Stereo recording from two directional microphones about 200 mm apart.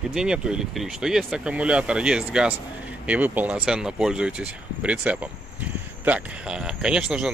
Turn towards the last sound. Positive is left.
turn(degrees=-5)  # may be behind; listen again after turning